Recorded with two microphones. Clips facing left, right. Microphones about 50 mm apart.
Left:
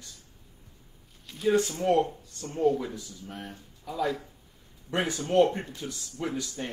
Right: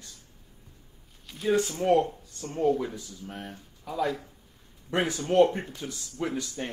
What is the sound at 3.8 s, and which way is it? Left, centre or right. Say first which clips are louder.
Speech: right 1 dB; centre.